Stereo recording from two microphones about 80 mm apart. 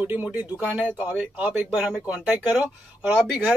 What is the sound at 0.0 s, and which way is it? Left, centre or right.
Speech, right.